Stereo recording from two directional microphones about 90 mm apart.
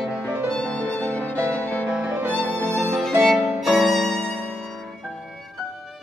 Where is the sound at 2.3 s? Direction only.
10° left (ahead or behind).